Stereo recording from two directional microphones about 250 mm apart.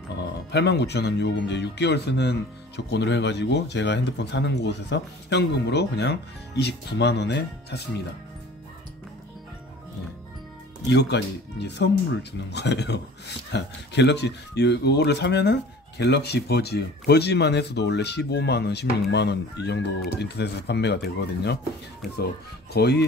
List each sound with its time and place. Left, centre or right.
0.5 s speech: left
10.9 s speech: left
22.7 s speech: left